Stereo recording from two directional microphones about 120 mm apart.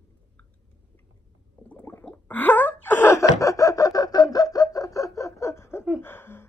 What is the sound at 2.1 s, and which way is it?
Gasp, 15° left (ahead or behind).